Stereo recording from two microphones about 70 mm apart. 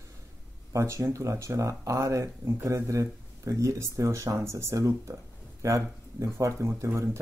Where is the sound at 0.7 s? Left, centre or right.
Right.